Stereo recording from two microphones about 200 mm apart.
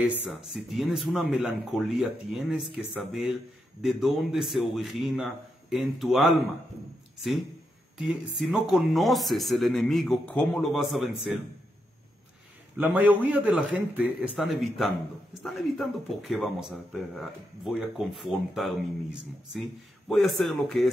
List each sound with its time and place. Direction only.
0.2 s speech: centre (ahead or behind)
12.7 s a man's voice: 10° right (ahead or behind)